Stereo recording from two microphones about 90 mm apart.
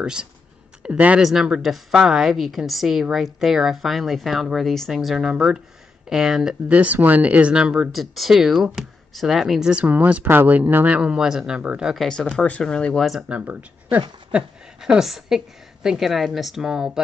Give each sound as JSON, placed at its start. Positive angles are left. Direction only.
{"t": 0.0, "sound": "a woman's voice", "side_deg": -10}
{"t": 6.7, "sound": "speech", "side_deg": -15}
{"t": 7.9, "sound": "speech", "side_deg": 0}
{"t": 12.0, "sound": "speech", "side_deg": 5}
{"t": 13.3, "sound": "speech", "side_deg": -15}
{"t": 14.3, "sound": "a woman's voice", "side_deg": -5}